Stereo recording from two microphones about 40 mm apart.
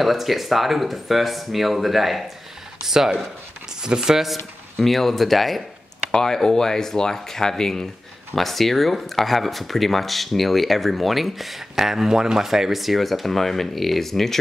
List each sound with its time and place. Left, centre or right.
0.0 s speech: centre
4.8 s speech: centre
6.1 s speech: centre